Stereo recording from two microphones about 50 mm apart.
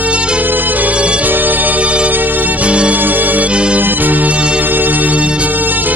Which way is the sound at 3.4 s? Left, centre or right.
Right.